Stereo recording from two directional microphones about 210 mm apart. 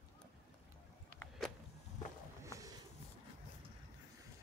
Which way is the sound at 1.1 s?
Centre (ahead or behind).